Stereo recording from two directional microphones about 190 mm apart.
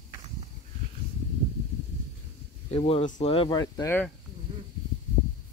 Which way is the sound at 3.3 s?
25° left (ahead or behind).